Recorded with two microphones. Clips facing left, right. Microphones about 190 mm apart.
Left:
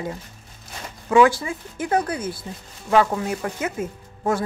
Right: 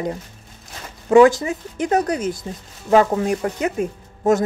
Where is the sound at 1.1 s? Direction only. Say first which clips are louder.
Right 5 dB; 45° right (ahead or behind).